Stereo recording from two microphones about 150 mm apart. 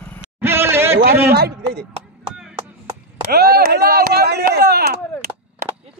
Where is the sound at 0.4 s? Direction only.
15° right (ahead or behind).